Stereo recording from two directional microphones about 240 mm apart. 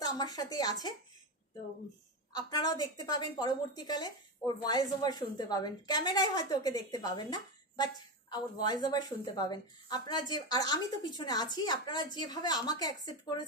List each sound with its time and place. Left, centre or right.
0.0 s a woman's voice: centre
2.3 s a woman's voice: centre